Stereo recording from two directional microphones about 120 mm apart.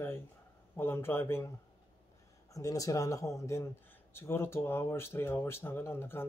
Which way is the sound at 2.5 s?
30° left (ahead or behind).